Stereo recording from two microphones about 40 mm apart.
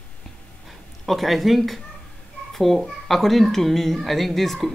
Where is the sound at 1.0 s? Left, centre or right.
Centre.